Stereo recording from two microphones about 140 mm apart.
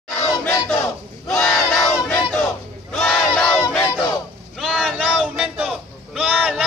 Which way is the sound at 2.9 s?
Centre (ahead or behind).